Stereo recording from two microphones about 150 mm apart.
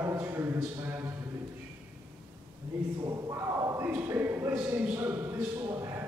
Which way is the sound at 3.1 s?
20° right (ahead or behind).